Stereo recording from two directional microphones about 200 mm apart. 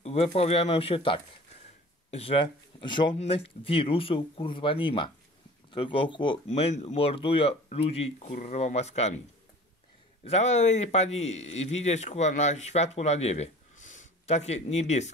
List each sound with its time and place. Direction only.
0.0 s speech: 30° left (ahead or behind)
10.2 s speech: 35° left (ahead or behind)